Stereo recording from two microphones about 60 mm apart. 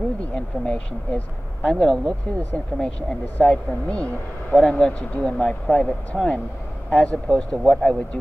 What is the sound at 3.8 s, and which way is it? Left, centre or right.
Speech, left.